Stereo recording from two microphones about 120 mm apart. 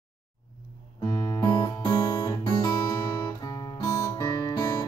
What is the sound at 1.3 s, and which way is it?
Guitar, 35° left (ahead or behind).